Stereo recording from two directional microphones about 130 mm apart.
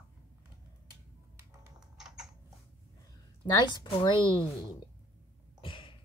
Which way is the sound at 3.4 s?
35° left (ahead or behind).